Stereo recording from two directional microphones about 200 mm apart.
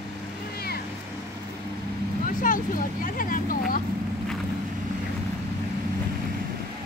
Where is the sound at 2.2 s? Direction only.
40° left (ahead or behind).